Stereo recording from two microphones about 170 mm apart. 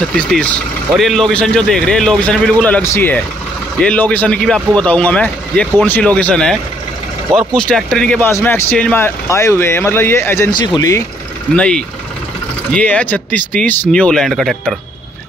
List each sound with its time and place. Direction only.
0.9 s a man's voice: centre (ahead or behind); by 11.1 s 20° left (ahead or behind)
11.5 s a man's voice: 5° left (ahead or behind)